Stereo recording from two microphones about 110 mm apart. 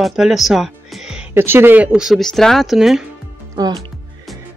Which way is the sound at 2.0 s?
Centre (ahead or behind).